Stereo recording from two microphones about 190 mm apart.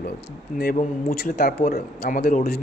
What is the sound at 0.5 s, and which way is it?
A man's voice, 45° left (ahead or behind).